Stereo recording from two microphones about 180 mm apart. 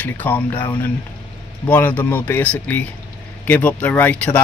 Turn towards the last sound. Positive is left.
turn(degrees=10)  # may be behind; listen again after turning